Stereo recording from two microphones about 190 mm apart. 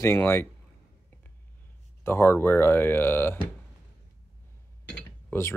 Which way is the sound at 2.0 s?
10° left (ahead or behind).